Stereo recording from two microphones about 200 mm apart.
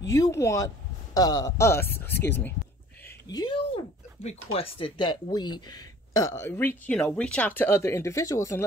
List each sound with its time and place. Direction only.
0.1 s speech: 15° left (ahead or behind)